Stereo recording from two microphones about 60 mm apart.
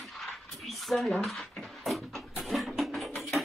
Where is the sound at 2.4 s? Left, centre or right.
Centre.